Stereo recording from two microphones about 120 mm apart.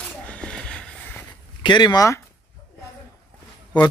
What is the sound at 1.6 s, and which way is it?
Speech, 40° left (ahead or behind).